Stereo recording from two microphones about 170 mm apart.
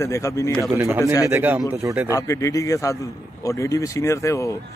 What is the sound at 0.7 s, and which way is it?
Speech, 15° right (ahead or behind).